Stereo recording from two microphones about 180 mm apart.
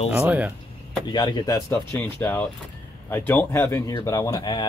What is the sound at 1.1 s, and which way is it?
Speech, 25° left (ahead or behind).